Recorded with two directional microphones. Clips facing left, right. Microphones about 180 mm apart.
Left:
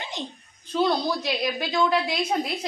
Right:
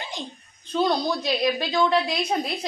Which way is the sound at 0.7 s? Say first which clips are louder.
Even; 5° left (ahead or behind).